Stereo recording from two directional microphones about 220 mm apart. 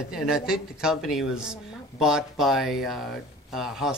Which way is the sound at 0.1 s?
5° right (ahead or behind).